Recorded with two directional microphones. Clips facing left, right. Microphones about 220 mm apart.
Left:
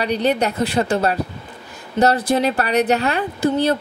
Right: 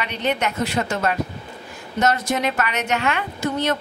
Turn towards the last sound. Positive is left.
turn(degrees=30)  # may be behind; listen again after turning